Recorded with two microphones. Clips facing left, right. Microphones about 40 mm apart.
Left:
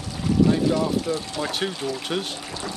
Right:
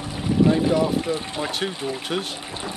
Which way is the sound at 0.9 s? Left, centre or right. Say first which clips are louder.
Right 1 dB; right.